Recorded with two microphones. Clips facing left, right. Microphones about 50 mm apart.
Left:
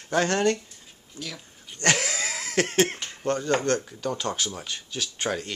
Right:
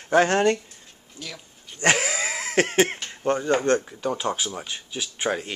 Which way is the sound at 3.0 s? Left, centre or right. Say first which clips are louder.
Right 3 dB; right.